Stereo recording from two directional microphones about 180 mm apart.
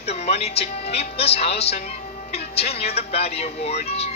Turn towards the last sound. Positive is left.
turn(degrees=35)  # may be behind; listen again after turning